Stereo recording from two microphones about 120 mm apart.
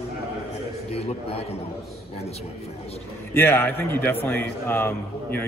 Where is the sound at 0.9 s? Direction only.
60° left (ahead or behind).